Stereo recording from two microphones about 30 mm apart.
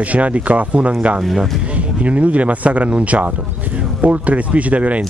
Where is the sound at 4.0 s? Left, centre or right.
Right.